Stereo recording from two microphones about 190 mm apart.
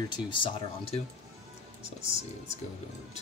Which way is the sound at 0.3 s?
30° left (ahead or behind).